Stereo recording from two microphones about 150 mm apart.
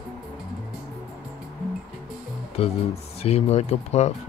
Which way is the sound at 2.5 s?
45° left (ahead or behind).